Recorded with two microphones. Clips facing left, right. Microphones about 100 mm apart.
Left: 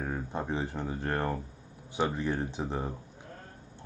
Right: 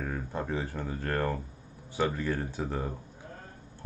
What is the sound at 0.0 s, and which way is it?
Speech, 20° left (ahead or behind).